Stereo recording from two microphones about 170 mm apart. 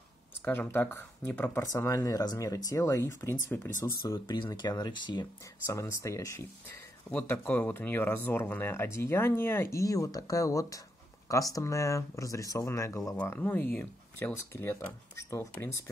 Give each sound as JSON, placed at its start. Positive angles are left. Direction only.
{"t": 0.5, "sound": "speech", "side_deg": 15}